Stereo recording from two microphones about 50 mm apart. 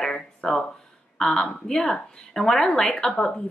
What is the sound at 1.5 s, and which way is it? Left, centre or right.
A woman's voice, centre.